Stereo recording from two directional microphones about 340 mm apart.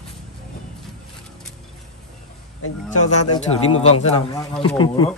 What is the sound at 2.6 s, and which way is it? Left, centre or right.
Speech, left.